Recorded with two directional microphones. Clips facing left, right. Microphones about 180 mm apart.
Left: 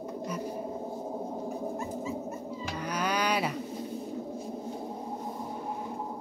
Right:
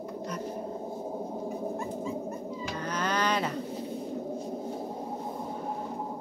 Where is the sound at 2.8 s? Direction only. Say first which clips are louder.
Even; 10° left (ahead or behind).